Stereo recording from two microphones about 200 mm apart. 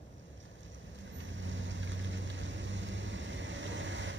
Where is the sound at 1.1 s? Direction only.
70° right (ahead or behind).